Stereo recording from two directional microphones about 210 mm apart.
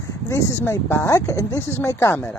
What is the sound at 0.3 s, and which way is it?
Speech, 10° left (ahead or behind).